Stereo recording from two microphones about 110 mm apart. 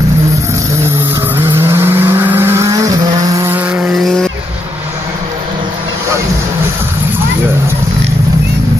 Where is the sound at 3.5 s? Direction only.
10° right (ahead or behind).